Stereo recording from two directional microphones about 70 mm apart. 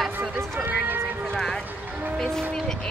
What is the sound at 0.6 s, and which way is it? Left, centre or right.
Speech, right.